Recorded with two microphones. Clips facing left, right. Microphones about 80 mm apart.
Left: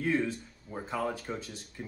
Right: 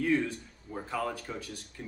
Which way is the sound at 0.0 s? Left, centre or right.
Left.